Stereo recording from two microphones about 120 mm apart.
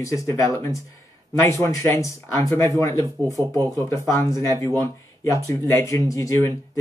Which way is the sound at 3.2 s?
30° right (ahead or behind).